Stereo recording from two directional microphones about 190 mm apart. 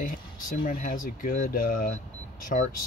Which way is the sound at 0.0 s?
45° left (ahead or behind).